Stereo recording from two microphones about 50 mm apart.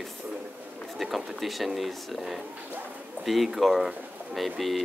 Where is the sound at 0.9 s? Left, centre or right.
Centre.